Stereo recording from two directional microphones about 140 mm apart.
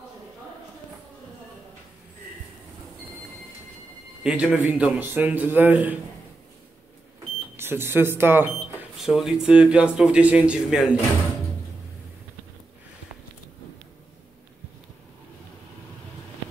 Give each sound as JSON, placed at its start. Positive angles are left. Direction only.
{"t": 4.2, "sound": "a man's voice", "side_deg": -5}
{"t": 7.5, "sound": "speech", "side_deg": -15}
{"t": 8.9, "sound": "a man's voice", "side_deg": 0}